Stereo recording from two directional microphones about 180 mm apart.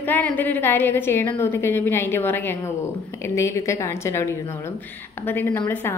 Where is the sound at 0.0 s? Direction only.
10° left (ahead or behind).